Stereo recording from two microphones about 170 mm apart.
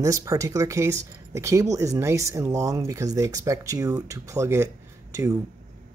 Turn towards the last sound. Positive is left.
turn(degrees=-20)  # may be behind; listen again after turning